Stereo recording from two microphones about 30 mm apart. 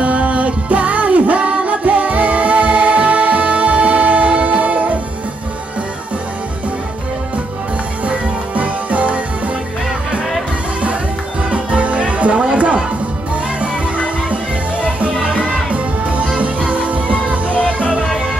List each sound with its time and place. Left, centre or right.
0.0 s music: right
8.0 s music: right
11.5 s music: right
15.7 s music: right